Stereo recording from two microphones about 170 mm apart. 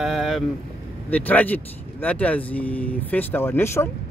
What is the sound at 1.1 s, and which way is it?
Speech, 10° left (ahead or behind).